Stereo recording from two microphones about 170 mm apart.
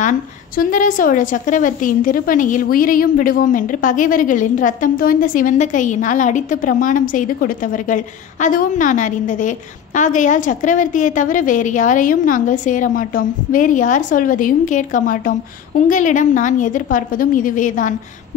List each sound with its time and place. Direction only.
0.6 s a woman's voice: 50° left (ahead or behind)